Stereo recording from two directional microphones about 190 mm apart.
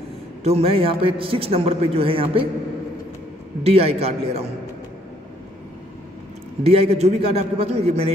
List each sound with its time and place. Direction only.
0.4 s a man's voice: 30° right (ahead or behind)
3.6 s a man's voice: 30° right (ahead or behind)
6.6 s a man's voice: 30° right (ahead or behind)